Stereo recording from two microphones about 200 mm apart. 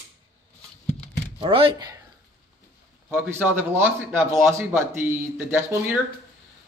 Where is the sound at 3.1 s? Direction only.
10° right (ahead or behind).